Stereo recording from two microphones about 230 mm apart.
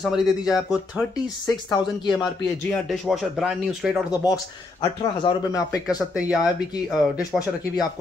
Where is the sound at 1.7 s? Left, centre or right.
Centre.